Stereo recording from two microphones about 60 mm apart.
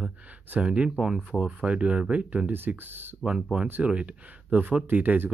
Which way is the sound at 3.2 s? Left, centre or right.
Centre.